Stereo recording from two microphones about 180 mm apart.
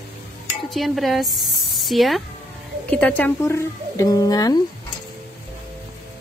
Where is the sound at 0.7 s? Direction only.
Centre (ahead or behind); by 4.6 s 20° left (ahead or behind).